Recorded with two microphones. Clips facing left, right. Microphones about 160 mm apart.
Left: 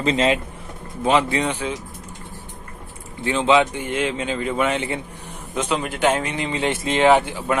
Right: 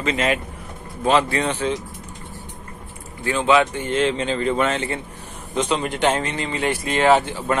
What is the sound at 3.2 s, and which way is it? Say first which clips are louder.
A man's voice: even; 20° left (ahead or behind).